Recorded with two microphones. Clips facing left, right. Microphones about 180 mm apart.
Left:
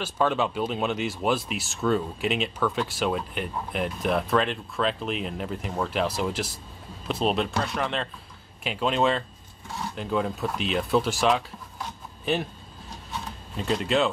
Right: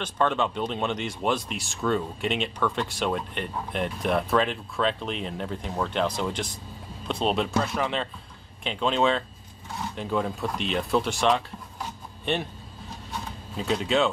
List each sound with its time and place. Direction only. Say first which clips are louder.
0.0 s speech: left 1 dB; 5° left (ahead or behind)
13.6 s speech: even; centre (ahead or behind)